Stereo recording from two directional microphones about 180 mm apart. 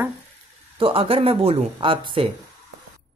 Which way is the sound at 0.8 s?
30° right (ahead or behind).